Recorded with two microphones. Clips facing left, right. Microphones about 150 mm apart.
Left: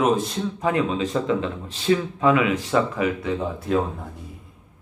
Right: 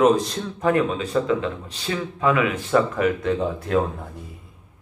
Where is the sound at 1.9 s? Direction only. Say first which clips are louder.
Left 7 dB; 25° left (ahead or behind).